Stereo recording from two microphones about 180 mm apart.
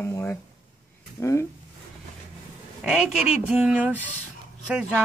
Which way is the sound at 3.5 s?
10° right (ahead or behind).